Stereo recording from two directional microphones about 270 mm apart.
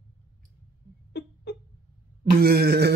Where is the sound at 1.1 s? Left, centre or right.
Left.